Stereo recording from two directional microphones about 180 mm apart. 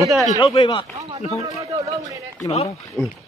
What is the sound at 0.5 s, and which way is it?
Speech, 25° left (ahead or behind).